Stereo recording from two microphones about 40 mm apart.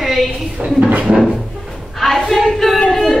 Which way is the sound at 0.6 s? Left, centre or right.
Right.